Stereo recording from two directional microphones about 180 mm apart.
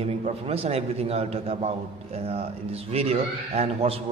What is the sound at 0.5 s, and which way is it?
A man's voice, 35° right (ahead or behind).